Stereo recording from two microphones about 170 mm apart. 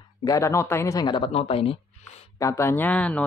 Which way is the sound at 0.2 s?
20° left (ahead or behind).